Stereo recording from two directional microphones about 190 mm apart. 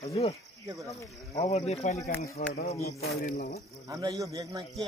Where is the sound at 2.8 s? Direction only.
55° left (ahead or behind).